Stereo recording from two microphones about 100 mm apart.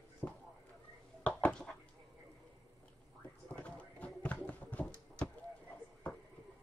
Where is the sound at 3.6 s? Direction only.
15° left (ahead or behind).